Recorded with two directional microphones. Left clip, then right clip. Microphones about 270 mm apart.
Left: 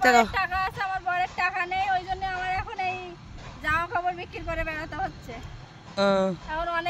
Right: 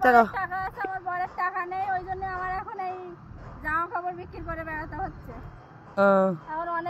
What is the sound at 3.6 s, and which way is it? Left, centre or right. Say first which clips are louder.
Vehicle: left 2 dB; centre.